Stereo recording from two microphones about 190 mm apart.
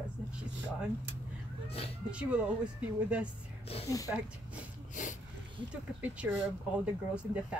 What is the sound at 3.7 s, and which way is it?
Speech, 30° left (ahead or behind).